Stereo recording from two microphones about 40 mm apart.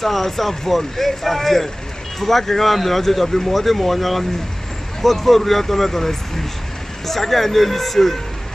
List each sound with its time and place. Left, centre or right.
0.0 s speech: centre